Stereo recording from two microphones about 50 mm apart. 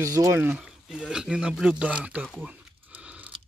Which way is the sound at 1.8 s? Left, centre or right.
Right.